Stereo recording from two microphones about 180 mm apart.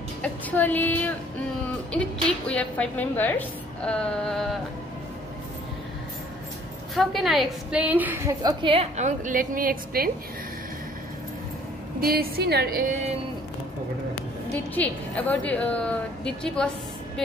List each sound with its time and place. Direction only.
0.2 s a woman's voice: 10° left (ahead or behind)
2.4 s a woman's voice: 5° left (ahead or behind)
7.0 s a woman's voice: centre (ahead or behind)
8.4 s a woman's voice: 25° right (ahead or behind); by 10.1 s 55° right (ahead or behind)
12.0 s a woman's voice: 55° right (ahead or behind)
14.5 s a woman's voice: 10° left (ahead or behind)